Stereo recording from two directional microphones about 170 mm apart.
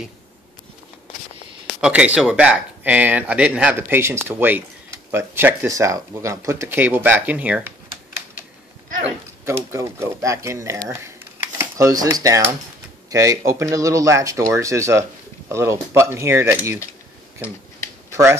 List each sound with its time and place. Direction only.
1.8 s speech: 5° right (ahead or behind)
9.4 s speech: 15° right (ahead or behind)